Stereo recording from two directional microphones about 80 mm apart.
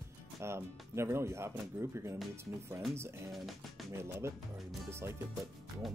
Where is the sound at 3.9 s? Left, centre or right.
Right.